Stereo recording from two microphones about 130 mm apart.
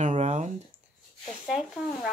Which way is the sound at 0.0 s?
60° right (ahead or behind).